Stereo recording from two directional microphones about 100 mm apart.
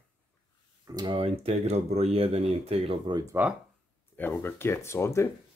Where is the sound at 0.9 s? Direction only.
45° right (ahead or behind).